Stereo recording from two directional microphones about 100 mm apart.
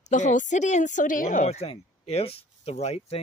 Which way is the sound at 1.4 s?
90° left.